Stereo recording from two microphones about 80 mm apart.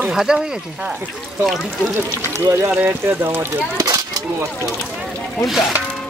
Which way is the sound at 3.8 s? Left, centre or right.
Right.